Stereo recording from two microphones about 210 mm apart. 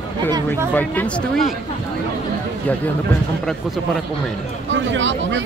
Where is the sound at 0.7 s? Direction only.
5° left (ahead or behind).